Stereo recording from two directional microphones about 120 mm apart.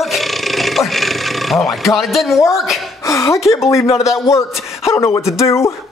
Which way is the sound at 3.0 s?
25° left (ahead or behind).